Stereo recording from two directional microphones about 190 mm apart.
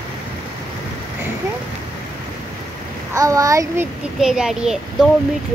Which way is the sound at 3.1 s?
15° right (ahead or behind).